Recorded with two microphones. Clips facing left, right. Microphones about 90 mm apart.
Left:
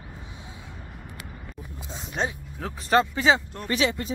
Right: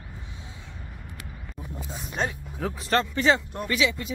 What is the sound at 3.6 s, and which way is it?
Speech, 35° left (ahead or behind).